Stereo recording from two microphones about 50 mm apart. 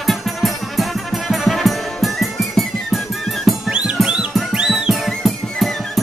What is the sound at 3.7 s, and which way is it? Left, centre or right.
Music, centre.